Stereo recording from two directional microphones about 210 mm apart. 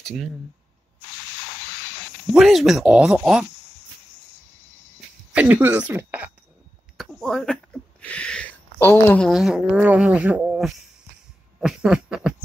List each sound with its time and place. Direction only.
2.3 s speech: centre (ahead or behind)
5.3 s speech: 10° right (ahead or behind)
11.6 s a sound: 5° right (ahead or behind)